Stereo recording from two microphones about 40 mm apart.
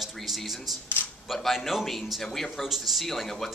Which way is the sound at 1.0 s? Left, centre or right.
Left.